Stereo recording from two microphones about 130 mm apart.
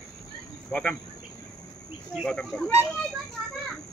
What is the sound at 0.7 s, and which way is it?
Speech, 5° left (ahead or behind).